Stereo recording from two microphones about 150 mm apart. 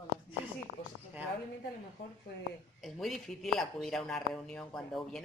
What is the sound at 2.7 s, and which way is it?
Speech, centre (ahead or behind).